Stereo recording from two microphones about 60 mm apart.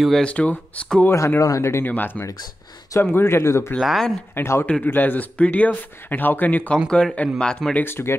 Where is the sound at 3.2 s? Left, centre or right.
Left.